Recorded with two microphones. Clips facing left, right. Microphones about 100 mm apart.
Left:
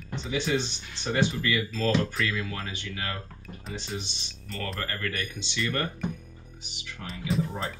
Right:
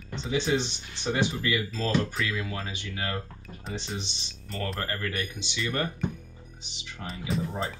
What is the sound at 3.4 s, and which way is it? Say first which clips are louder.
Speech: right 1 dB; centre (ahead or behind).